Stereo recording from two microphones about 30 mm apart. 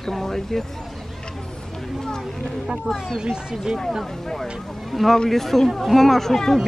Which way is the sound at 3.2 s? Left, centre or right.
Centre.